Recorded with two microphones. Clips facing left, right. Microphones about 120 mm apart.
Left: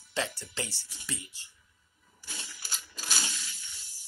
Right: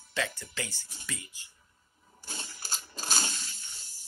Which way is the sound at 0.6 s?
30° left (ahead or behind).